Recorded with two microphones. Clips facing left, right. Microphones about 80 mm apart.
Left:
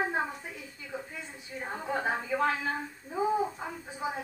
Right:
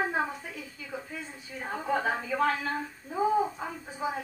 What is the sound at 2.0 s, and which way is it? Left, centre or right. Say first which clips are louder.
Speech: left 1 dB; centre.